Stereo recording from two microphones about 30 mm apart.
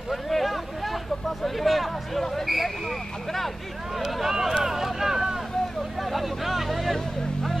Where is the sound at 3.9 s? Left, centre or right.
Centre.